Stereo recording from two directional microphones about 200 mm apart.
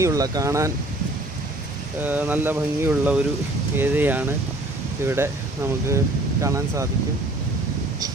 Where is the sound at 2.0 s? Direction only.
10° right (ahead or behind).